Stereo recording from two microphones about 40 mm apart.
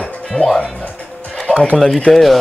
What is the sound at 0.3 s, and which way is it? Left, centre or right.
Speech, left.